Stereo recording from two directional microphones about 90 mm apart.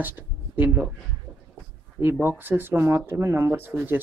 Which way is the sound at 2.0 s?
25° right (ahead or behind).